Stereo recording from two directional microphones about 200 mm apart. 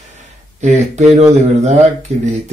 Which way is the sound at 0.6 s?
35° right (ahead or behind).